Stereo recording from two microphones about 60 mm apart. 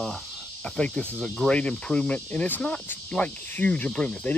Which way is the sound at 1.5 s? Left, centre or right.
Centre.